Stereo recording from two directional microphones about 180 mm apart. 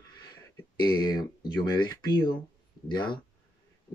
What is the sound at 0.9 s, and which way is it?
Speech, 25° left (ahead or behind).